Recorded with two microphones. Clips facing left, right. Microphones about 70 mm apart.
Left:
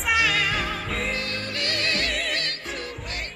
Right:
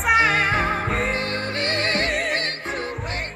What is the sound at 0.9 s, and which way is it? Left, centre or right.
Music, right.